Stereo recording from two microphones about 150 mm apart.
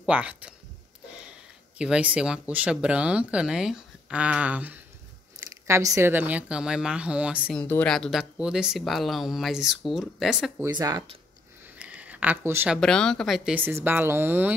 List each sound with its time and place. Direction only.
0.0 s speech: 10° right (ahead or behind)
1.8 s speech: 5° right (ahead or behind)
7.5 s speech: 10° left (ahead or behind)
10.7 s speech: 25° right (ahead or behind)
11.6 s a sound: 10° right (ahead or behind)
12.7 s speech: 5° left (ahead or behind)
13.6 s speech: 15° right (ahead or behind)